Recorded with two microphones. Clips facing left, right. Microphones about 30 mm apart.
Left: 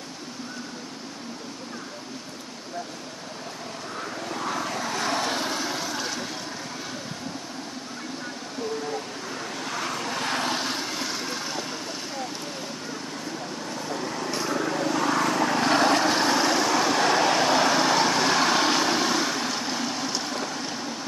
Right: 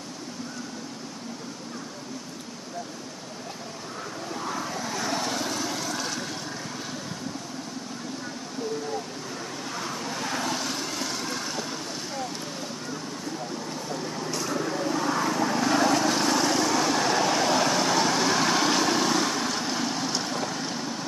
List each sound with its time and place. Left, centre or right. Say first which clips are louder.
4.5 s vehicle: left 3 dB; left
5.1 s vehicle: left 2 dB; left; by 6.2 s centre
9.7 s vehicle: left 4 dB; left
10.1 s vehicle: left 2 dB; left
10.5 s vehicle: left 2 dB; left; by 11.6 s centre
14.5 s vehicle: left 2 dB; left
15.4 s vehicle: left 1 dB; left
16.1 s vehicle: left 2 dB; left; by 21.0 s centre